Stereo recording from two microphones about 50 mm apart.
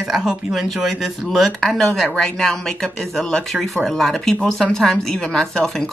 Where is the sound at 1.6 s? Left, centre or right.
Centre.